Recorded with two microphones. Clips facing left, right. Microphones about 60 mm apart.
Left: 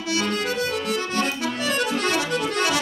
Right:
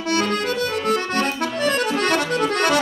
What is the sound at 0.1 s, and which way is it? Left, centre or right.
Accordion, right.